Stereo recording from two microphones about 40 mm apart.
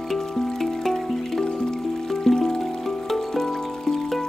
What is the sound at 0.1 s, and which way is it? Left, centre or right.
Music, centre.